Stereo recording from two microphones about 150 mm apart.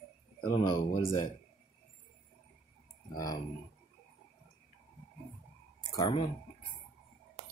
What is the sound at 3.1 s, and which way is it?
Speech, 25° left (ahead or behind).